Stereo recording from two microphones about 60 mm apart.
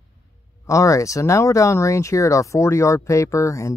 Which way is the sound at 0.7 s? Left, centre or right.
Left.